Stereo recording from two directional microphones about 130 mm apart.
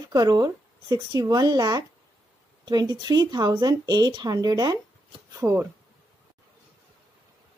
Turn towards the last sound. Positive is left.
turn(degrees=-20)  # may be behind; listen again after turning